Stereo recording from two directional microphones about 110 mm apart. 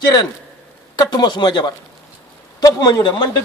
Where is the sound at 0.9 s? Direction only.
40° left (ahead or behind).